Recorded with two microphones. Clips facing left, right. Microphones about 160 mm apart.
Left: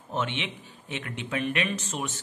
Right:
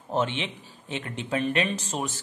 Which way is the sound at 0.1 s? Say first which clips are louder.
Right 4 dB; 35° right (ahead or behind).